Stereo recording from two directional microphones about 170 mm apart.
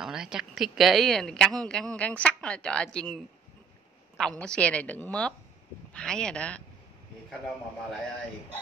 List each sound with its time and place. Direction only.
0.0 s a woman's voice: 5° right (ahead or behind)
4.2 s a woman's voice: 5° left (ahead or behind)